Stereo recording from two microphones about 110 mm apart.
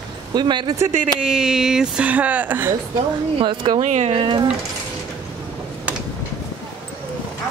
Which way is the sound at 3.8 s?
90° right.